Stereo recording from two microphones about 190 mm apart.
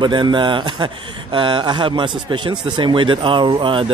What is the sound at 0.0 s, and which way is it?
Speech, 25° right (ahead or behind).